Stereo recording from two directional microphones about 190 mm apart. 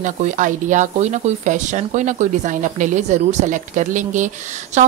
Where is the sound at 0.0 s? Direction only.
40° right (ahead or behind).